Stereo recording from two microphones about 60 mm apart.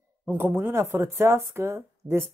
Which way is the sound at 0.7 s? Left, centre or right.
Right.